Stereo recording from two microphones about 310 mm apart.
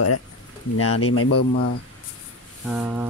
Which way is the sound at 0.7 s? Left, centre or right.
Left.